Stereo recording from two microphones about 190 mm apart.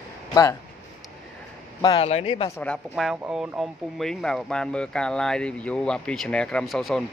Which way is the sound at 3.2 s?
10° right (ahead or behind).